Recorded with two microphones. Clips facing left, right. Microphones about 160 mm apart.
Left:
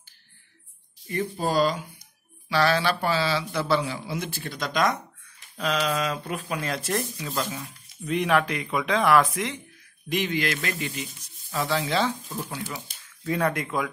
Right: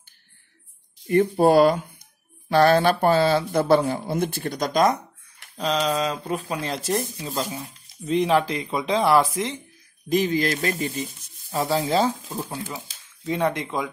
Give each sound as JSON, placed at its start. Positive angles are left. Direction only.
{"t": 1.0, "sound": "speech", "side_deg": -50}
{"t": 7.2, "sound": "speech", "side_deg": -10}
{"t": 7.5, "sound": "speech", "side_deg": -25}
{"t": 13.2, "sound": "speech", "side_deg": -20}